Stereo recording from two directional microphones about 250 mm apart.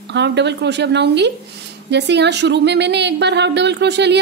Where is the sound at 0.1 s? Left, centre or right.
Right.